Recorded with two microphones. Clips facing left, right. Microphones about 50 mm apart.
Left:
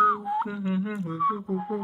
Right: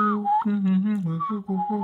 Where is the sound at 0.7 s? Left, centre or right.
Centre.